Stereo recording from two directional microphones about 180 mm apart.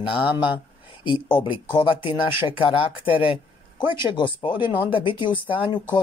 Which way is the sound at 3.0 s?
30° left (ahead or behind).